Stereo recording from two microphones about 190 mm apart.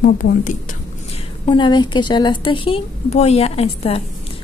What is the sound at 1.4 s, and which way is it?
A woman's voice, 25° left (ahead or behind).